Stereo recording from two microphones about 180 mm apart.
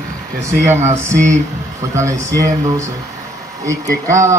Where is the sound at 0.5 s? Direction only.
15° right (ahead or behind).